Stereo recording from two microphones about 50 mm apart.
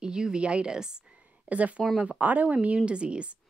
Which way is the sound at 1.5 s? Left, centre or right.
Right.